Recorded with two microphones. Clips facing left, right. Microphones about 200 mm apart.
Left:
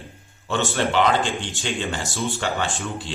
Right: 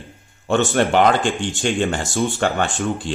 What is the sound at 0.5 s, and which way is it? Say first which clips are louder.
Speech: right 6 dB; 50° right (ahead or behind).